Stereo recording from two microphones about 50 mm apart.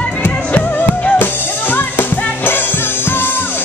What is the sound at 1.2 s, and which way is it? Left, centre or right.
Music, left.